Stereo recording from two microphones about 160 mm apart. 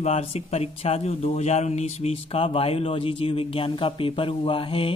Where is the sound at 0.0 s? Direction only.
40° left (ahead or behind).